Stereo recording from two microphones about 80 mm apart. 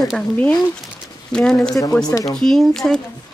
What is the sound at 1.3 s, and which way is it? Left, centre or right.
Speech, centre.